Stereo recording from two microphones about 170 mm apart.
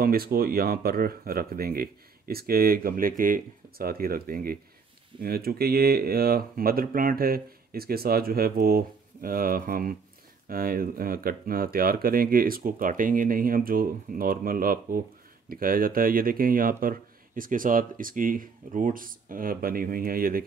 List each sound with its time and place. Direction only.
0.0 s speech: 60° right (ahead or behind)